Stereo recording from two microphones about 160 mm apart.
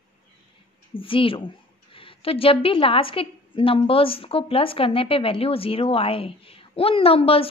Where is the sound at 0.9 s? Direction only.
35° left (ahead or behind).